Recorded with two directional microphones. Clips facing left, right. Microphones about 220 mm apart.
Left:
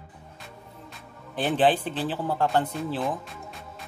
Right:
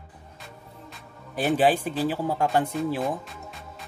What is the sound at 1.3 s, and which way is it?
A man's voice, 10° right (ahead or behind).